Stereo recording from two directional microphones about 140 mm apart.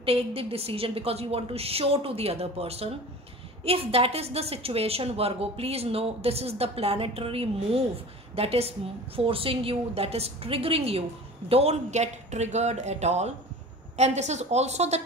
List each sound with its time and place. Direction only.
0.0 s a woman's voice: 45° right (ahead or behind)